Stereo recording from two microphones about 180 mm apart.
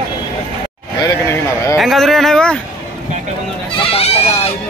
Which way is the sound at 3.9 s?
35° left (ahead or behind).